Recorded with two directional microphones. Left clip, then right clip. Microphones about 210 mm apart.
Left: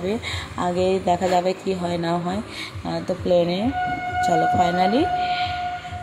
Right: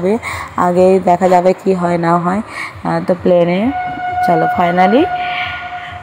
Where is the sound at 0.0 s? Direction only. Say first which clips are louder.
Right 10 dB; 20° right (ahead or behind).